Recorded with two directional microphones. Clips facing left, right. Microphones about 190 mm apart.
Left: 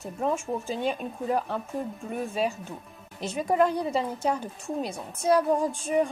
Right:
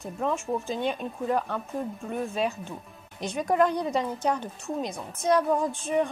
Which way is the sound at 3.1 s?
5° left (ahead or behind).